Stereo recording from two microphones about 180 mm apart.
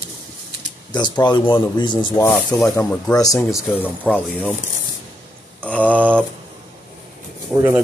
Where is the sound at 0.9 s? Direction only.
25° left (ahead or behind).